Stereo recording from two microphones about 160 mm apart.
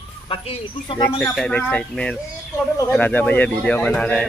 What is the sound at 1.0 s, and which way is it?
A man's voice, 15° left (ahead or behind).